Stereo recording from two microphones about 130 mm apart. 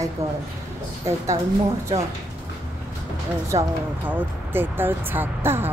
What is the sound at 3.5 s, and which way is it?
Speech, 15° right (ahead or behind).